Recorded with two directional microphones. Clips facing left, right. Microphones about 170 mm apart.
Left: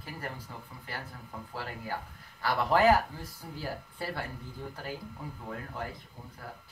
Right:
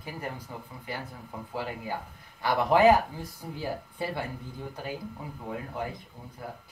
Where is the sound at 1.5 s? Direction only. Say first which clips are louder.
Right 4 dB; 15° right (ahead or behind).